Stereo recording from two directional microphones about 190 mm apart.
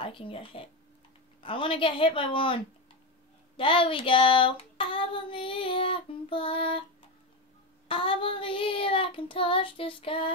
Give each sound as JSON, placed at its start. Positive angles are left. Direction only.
{"t": 0.0, "sound": "child singing", "side_deg": 30}
{"t": 7.9, "sound": "child singing", "side_deg": 30}